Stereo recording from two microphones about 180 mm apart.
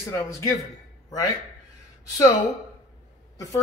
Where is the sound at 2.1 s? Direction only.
20° left (ahead or behind).